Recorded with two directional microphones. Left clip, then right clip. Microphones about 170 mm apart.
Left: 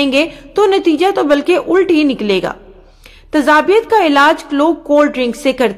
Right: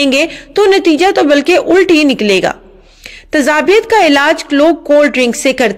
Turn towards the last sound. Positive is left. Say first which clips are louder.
# right 3 dB
turn(degrees=-15)  # may be behind; listen again after turning